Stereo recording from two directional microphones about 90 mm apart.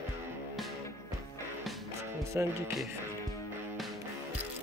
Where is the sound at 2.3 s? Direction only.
30° right (ahead or behind).